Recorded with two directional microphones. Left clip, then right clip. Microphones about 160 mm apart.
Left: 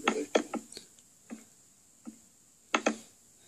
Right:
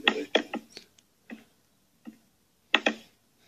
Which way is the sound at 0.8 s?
10° left (ahead or behind).